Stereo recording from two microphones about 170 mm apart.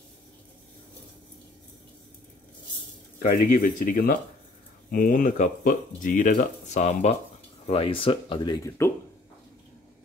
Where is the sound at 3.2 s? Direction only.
50° left (ahead or behind); by 8.5 s 30° left (ahead or behind).